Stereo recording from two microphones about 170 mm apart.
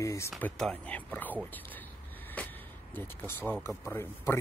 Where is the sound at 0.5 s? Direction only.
5° left (ahead or behind).